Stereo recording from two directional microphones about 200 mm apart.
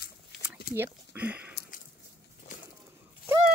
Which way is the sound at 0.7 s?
10° right (ahead or behind).